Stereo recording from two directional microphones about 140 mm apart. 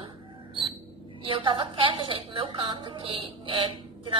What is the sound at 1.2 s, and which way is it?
A woman's voice, 40° right (ahead or behind).